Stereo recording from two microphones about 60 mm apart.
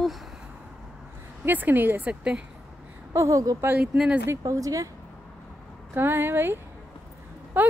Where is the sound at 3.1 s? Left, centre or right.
Right.